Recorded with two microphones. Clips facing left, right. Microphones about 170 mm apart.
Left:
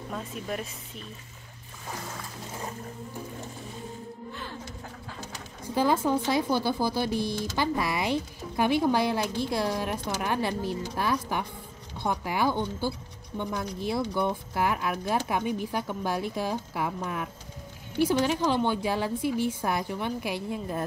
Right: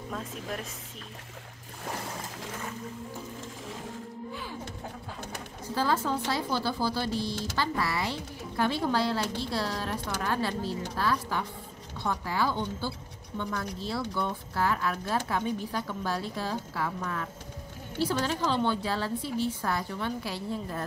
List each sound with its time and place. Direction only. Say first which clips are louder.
5.8 s speech: left 4 dB; 15° left (ahead or behind)